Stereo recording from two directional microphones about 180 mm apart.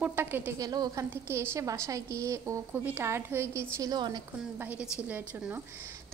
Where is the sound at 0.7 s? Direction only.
20° right (ahead or behind).